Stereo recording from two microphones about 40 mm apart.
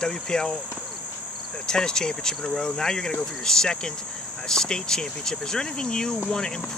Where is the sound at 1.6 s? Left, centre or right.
Centre.